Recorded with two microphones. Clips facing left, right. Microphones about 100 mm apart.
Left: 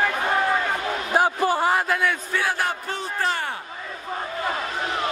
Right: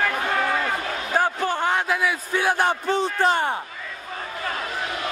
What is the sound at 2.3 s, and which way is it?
A man's voice, 20° right (ahead or behind).